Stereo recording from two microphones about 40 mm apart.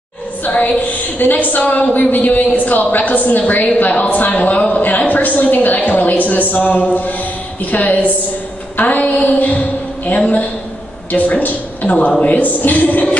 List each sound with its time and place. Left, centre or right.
0.4 s a woman's voice: left